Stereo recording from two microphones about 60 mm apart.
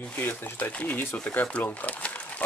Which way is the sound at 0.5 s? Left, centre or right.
Left.